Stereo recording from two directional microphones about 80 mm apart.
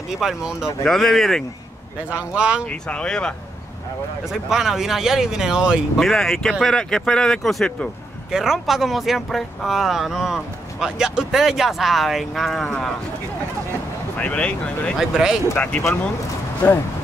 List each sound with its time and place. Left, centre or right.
0.1 s speech: centre
0.8 s speech: centre
2.0 s speech: centre
2.7 s speech: centre
4.3 s speech: centre
5.9 s speech: centre
14.1 s speech: centre
15.0 s speech: centre
15.5 s speech: centre